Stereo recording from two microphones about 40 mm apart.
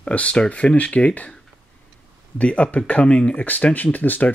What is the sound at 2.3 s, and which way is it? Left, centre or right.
Speech, left.